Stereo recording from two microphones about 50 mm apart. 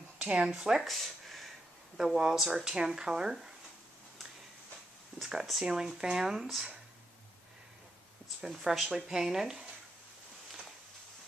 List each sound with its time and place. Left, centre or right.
0.2 s speech: right
0.6 s speech: centre
0.8 s a sound: centre
2.1 s speech: centre
5.2 s speech: centre
8.4 s speech: centre